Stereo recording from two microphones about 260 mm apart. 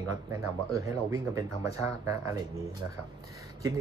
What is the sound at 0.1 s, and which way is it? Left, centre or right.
Speech, centre.